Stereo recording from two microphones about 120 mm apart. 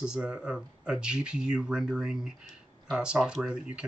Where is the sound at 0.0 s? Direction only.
5° right (ahead or behind).